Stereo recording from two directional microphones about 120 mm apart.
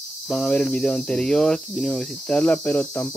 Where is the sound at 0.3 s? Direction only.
5° left (ahead or behind).